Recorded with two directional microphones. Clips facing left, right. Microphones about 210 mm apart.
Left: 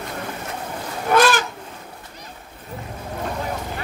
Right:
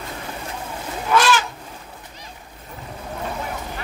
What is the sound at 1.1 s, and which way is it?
Goose, 55° left (ahead or behind).